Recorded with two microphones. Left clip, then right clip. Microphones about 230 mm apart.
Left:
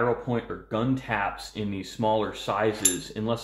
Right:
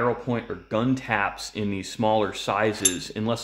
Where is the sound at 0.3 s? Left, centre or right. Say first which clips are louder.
Right 2 dB; right.